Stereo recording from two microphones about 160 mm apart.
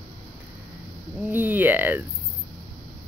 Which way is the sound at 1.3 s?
10° right (ahead or behind).